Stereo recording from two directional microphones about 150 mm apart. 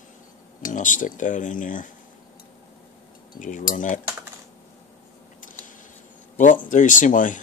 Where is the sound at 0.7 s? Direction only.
60° left (ahead or behind).